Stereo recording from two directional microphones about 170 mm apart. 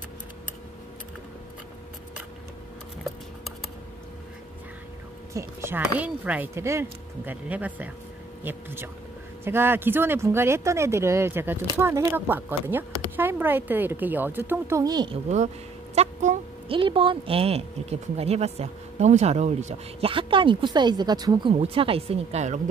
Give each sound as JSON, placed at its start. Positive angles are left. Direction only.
{"t": 5.3, "sound": "speech", "side_deg": -15}
{"t": 15.2, "sound": "a sound", "side_deg": -40}
{"t": 16.6, "sound": "speech", "side_deg": -30}